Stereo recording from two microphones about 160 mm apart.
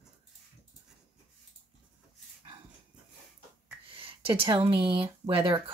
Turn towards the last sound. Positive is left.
turn(degrees=-30)  # may be behind; listen again after turning